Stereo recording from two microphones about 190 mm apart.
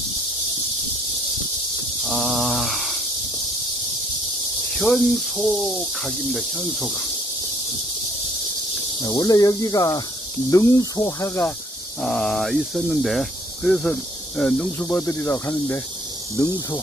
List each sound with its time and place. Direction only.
2.0 s a sound: centre (ahead or behind)
4.7 s speech: centre (ahead or behind)
9.0 s speech: 20° left (ahead or behind)
12.0 s speech: 5° left (ahead or behind)